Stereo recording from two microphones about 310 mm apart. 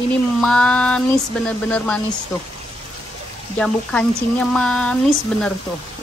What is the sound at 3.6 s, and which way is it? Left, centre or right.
Speech, centre.